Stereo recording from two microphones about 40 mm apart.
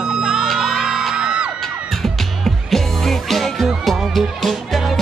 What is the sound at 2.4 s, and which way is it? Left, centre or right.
Music, centre.